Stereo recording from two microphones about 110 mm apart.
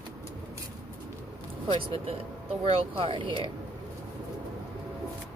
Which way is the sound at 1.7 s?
55° right (ahead or behind).